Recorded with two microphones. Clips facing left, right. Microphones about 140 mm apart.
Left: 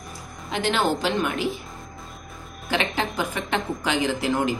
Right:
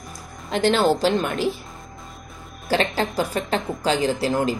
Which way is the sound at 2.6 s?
35° right (ahead or behind).